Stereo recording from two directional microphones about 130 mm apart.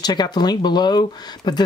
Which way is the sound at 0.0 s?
35° left (ahead or behind).